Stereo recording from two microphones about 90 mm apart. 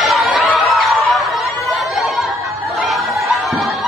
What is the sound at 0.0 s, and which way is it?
Chatter, centre (ahead or behind).